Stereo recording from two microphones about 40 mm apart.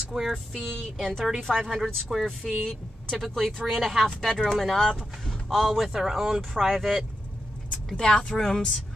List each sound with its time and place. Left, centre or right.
0.1 s speech: centre
0.6 s speech: centre
1.7 s speech: centre
4.0 s speech: centre
5.9 s speech: centre
7.7 s speech: centre